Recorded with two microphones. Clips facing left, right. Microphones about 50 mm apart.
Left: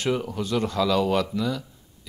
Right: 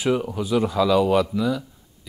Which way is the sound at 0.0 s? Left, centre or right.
Centre.